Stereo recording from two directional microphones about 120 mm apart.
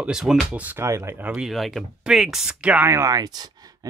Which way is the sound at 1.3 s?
Centre (ahead or behind).